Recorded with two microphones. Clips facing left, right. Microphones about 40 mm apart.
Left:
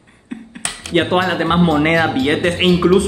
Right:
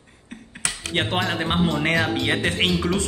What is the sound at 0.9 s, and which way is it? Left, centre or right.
Speech, centre.